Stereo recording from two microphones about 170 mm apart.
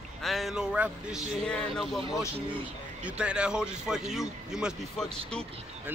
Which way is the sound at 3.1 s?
5° right (ahead or behind).